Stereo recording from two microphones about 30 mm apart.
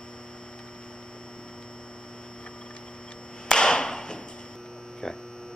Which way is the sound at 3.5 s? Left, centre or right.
Left.